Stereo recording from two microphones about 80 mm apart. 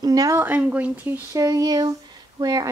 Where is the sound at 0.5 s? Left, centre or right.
Centre.